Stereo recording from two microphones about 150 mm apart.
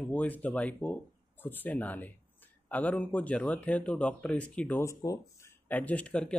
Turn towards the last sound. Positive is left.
turn(degrees=5)  # may be behind; listen again after turning